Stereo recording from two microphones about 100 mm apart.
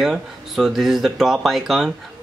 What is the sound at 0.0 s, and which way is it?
Speech, centre (ahead or behind).